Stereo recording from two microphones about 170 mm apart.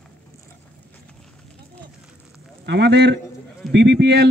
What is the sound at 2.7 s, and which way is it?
Speech, 90° right.